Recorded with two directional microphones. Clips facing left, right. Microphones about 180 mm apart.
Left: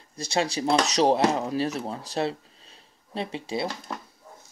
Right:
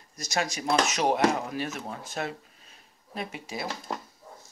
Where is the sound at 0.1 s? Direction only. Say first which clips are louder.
Left 4 dB; 30° left (ahead or behind).